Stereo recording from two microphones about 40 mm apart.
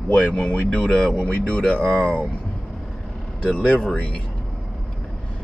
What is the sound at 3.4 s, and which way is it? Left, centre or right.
Speech, left.